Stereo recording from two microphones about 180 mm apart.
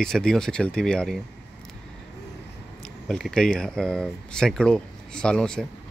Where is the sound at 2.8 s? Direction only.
5° left (ahead or behind).